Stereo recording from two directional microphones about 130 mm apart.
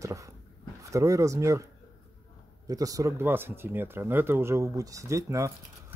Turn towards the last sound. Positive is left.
turn(degrees=-25)  # may be behind; listen again after turning